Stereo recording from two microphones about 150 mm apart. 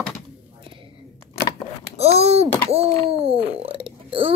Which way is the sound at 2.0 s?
45° right (ahead or behind).